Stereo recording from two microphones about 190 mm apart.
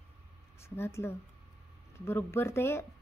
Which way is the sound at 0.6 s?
15° left (ahead or behind).